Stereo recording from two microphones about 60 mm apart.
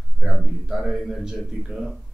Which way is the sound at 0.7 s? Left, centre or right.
Centre.